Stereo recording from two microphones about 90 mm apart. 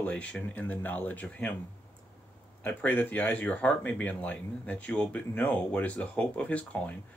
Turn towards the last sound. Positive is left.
turn(degrees=15)  # may be behind; listen again after turning